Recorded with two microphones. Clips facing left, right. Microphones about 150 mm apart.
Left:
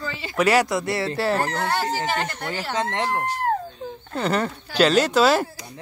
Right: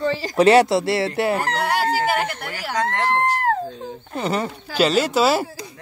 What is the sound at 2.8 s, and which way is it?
Speech, 20° left (ahead or behind).